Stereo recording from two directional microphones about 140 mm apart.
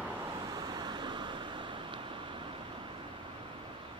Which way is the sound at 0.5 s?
30° right (ahead or behind).